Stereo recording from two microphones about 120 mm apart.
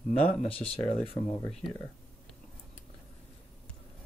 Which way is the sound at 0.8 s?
5° left (ahead or behind).